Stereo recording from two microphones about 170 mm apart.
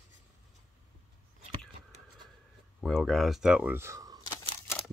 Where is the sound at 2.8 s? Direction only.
Centre (ahead or behind); by 4.2 s 20° right (ahead or behind).